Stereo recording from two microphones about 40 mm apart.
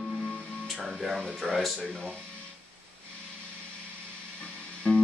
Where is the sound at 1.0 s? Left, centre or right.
Centre.